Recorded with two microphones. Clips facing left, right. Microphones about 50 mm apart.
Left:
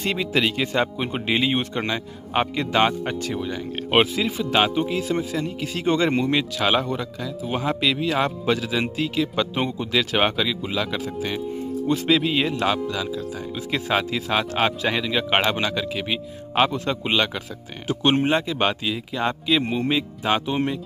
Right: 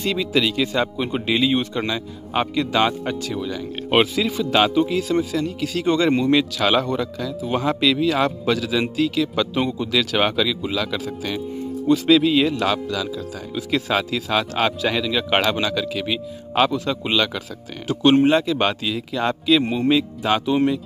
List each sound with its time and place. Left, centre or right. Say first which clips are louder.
0.0 s speech: right 2 dB; left
3.9 s a man's voice: right 1 dB; centre